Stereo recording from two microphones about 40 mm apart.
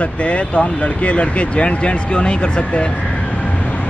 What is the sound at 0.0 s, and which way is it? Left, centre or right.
Speech, left.